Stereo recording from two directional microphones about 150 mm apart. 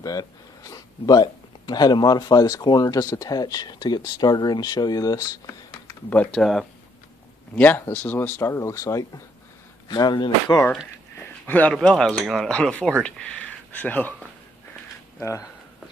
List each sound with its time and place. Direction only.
0.0 s speech: 25° left (ahead or behind)
6.3 s speech: centre (ahead or behind)
7.5 s speech: 10° left (ahead or behind)
9.8 s speech: 30° left (ahead or behind)
11.4 s speech: 10° left (ahead or behind)
15.1 s speech: 20° left (ahead or behind)